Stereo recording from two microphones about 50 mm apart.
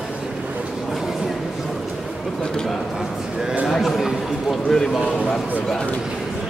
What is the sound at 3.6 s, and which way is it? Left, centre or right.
Speech, centre.